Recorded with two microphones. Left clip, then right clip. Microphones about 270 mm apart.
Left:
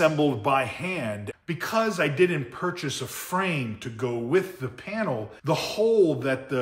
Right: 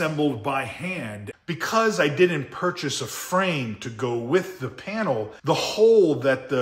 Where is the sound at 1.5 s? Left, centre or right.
Centre.